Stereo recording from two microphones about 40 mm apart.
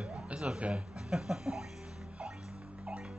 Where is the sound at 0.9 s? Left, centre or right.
Centre.